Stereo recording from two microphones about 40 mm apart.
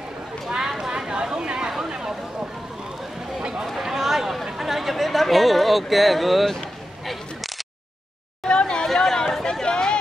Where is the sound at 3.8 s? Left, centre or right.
Centre.